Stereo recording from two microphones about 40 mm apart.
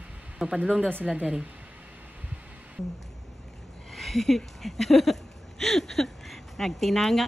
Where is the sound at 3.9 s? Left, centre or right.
Centre.